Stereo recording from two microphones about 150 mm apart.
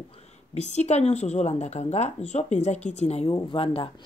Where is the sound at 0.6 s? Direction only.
45° left (ahead or behind).